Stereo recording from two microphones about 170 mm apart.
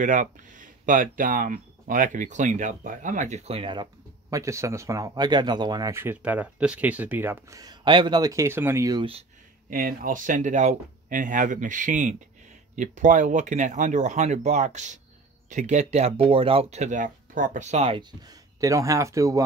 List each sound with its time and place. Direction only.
0.0 s speech: 50° right (ahead or behind); by 9.0 s 15° right (ahead or behind)
9.7 s speech: 55° right (ahead or behind); by 18.0 s 35° right (ahead or behind)
18.2 s speech: 20° right (ahead or behind)